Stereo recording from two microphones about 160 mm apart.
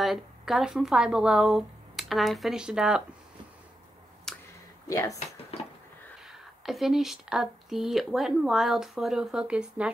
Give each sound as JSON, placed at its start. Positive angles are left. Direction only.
{"t": 0.0, "sound": "speech", "side_deg": 0}
{"t": 4.3, "sound": "a sound", "side_deg": 5}
{"t": 4.8, "sound": "speech", "side_deg": 20}
{"t": 6.2, "sound": "speech", "side_deg": 0}